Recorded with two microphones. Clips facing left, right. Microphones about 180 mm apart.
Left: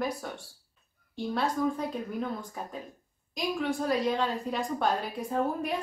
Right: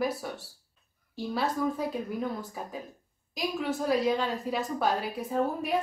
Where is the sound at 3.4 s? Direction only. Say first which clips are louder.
Left 1 dB; 5° right (ahead or behind).